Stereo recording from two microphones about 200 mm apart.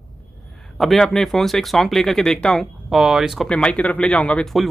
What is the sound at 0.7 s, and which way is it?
Speech, centre (ahead or behind).